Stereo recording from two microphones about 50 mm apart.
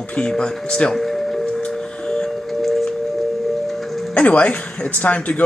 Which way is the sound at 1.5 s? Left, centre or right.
Centre.